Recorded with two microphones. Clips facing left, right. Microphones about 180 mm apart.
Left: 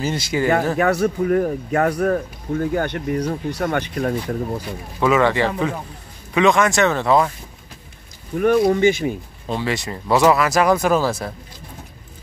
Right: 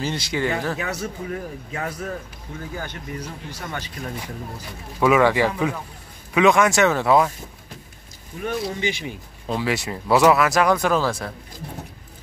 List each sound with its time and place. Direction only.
0.3 s speech: 10° left (ahead or behind)
0.7 s a man's voice: 60° left (ahead or behind)
5.0 s speech: 10° right (ahead or behind)
8.4 s speech: 55° left (ahead or behind)
9.5 s speech: 5° right (ahead or behind)